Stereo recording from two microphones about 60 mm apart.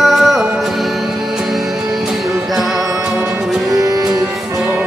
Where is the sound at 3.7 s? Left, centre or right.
Right.